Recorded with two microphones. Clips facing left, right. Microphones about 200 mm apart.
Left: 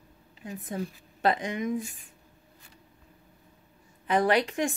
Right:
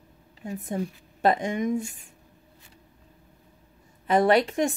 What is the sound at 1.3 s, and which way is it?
Speech, 45° right (ahead or behind).